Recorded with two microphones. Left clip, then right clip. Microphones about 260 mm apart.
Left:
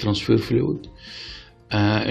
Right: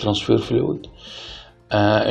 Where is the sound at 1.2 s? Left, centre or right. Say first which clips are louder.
Right 1 dB; left.